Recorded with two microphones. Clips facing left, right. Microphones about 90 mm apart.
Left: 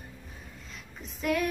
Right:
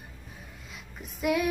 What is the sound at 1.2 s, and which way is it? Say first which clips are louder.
Child singing: right 2 dB; 10° right (ahead or behind).